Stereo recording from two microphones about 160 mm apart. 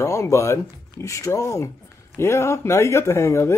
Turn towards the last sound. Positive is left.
turn(degrees=20)  # may be behind; listen again after turning